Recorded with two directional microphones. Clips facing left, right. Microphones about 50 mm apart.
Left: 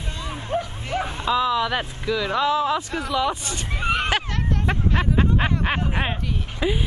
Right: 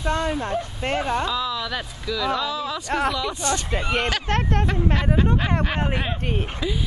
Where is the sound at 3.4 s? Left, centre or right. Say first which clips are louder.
Right 7 dB; right.